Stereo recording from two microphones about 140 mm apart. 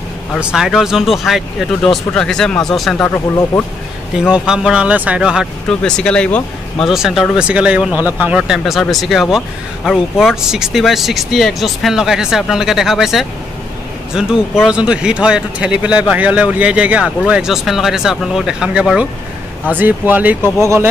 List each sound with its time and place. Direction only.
0.4 s speech: 5° right (ahead or behind)
3.1 s speech: 15° left (ahead or behind)
4.3 s speech: 5° right (ahead or behind)
6.9 s speech: centre (ahead or behind); by 20.9 s 20° right (ahead or behind)